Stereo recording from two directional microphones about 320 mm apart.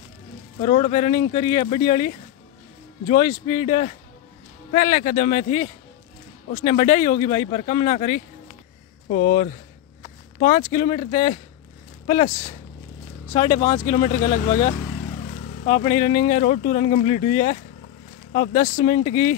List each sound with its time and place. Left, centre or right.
0.6 s speech: centre